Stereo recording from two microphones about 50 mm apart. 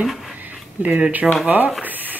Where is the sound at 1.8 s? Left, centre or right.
Right.